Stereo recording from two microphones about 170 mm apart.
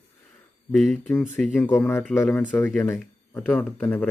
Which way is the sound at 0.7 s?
Centre (ahead or behind).